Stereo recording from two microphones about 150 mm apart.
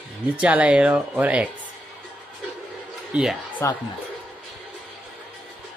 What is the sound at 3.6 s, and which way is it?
Speech, 20° left (ahead or behind).